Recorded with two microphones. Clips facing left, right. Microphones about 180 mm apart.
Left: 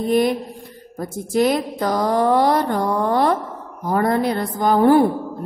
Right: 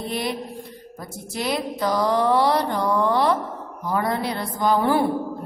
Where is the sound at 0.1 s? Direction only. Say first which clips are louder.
Left 12 dB; 45° left (ahead or behind).